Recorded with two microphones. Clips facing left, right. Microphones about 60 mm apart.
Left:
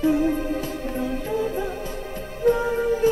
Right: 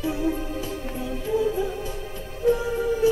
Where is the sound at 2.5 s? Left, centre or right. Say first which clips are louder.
Left 2 dB; left.